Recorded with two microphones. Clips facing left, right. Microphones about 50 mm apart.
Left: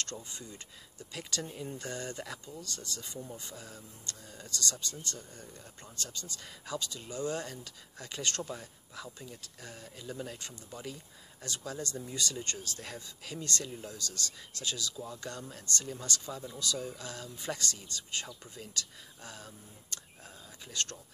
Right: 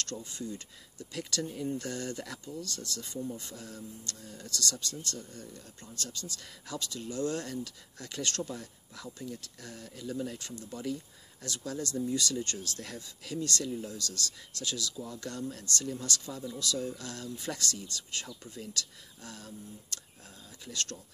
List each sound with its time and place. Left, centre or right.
0.0 s speech: left